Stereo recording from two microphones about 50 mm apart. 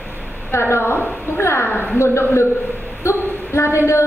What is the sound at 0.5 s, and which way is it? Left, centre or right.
A woman's voice, left.